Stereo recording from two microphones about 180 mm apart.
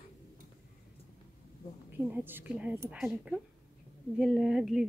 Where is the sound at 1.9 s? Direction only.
10° right (ahead or behind).